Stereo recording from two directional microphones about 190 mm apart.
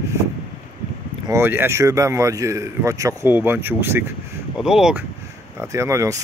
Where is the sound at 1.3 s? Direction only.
10° right (ahead or behind).